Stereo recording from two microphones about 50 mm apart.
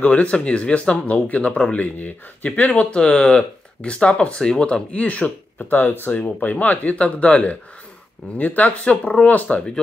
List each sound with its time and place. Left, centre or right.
0.0 s speech: left